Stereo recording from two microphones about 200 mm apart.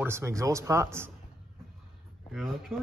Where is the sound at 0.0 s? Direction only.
15° right (ahead or behind).